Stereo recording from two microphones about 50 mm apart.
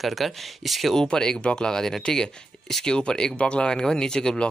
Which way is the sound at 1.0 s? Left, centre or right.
Centre.